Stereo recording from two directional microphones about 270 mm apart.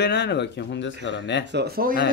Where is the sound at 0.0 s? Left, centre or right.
Left.